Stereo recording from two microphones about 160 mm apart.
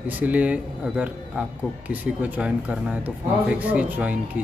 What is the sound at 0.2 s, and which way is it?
Speech, 10° right (ahead or behind).